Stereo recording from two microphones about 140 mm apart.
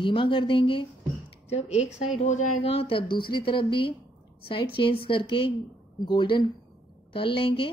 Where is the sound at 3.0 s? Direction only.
90° left.